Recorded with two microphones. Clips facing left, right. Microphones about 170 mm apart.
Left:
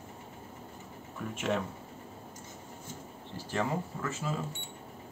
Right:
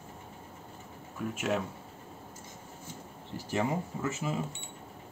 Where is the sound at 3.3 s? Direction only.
15° right (ahead or behind).